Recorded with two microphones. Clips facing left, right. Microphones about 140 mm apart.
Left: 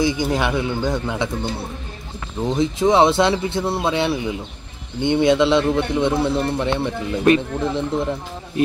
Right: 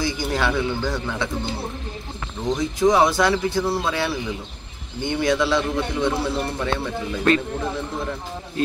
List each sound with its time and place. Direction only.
0.0 s a man's voice: 20° left (ahead or behind)
2.5 s a man's voice: 25° left (ahead or behind)